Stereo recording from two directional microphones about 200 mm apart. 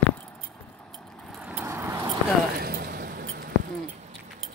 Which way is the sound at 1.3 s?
5° right (ahead or behind).